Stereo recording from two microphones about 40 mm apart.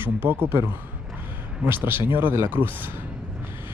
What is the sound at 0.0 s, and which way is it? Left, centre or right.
Speech, right.